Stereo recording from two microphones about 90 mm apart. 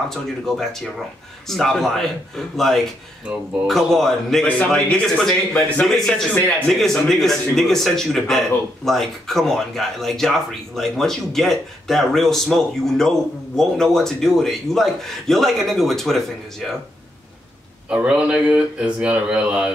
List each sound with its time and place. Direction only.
0.1 s a man's voice: 5° left (ahead or behind)
17.8 s speech: 10° right (ahead or behind)